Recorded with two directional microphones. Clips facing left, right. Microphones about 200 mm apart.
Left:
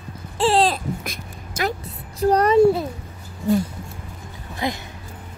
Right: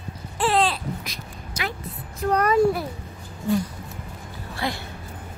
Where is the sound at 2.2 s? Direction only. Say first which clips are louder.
Left 5 dB; 35° left (ahead or behind).